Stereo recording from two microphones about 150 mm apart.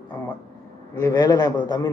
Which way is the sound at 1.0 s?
20° left (ahead or behind).